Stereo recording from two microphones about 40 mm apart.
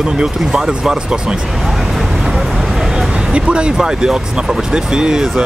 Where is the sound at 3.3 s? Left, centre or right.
Right.